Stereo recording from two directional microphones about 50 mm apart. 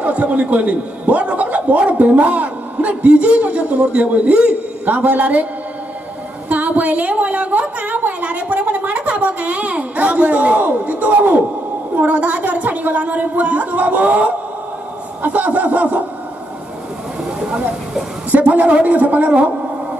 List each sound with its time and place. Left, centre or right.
0.0 s a man's voice: right
6.5 s speech: right
7.8 s a sound: right
9.2 s a man's voice: right
15.2 s a man's voice: right
17.2 s vehicle: centre
18.3 s a man's voice: right